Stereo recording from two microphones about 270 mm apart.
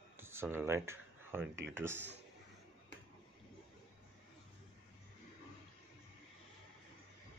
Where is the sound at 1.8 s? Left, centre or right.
Centre.